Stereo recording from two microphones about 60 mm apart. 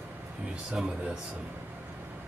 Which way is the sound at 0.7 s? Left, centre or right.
Centre.